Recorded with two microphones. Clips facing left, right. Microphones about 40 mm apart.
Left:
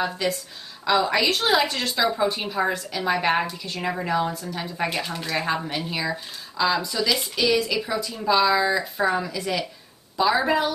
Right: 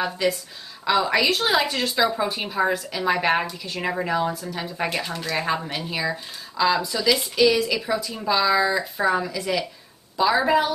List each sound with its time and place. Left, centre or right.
0.0 s a woman's voice: centre